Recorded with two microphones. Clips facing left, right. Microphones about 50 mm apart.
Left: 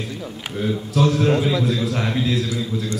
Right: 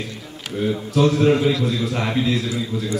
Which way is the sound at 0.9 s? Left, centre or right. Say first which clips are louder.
Right 2 dB; centre.